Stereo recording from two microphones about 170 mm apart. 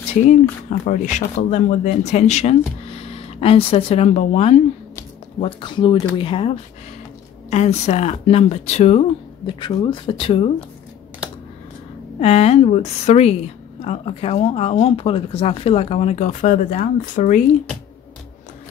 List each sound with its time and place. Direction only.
0.1 s speech: 45° left (ahead or behind)
9.5 s speech: 25° left (ahead or behind)
12.2 s speech: 35° left (ahead or behind)